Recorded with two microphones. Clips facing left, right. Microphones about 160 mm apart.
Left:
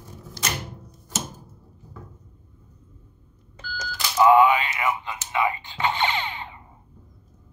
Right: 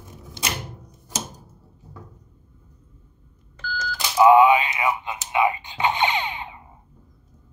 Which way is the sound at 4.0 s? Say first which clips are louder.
Right 2 dB; 15° right (ahead or behind).